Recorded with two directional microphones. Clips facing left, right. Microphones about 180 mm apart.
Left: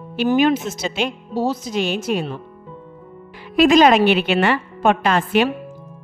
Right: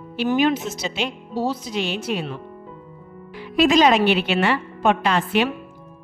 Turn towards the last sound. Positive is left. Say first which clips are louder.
# left 3 dB
turn(degrees=50)  # may be behind; listen again after turning